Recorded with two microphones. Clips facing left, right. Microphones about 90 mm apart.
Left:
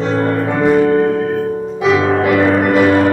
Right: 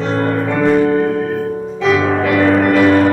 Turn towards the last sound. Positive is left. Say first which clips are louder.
# even
turn(degrees=10)  # may be behind; listen again after turning